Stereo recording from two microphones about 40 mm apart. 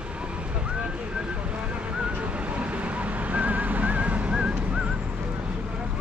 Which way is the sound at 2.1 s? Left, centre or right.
Right.